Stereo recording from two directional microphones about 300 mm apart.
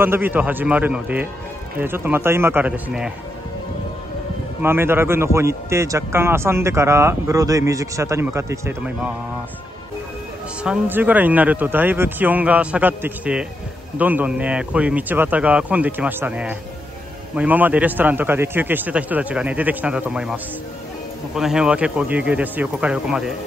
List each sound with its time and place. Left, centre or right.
0.0 s a man's voice: centre
4.6 s a man's voice: centre
10.6 s a man's voice: centre
21.4 s a man's voice: centre